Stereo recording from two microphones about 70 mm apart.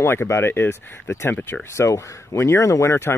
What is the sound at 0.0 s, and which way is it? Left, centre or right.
Speech, left.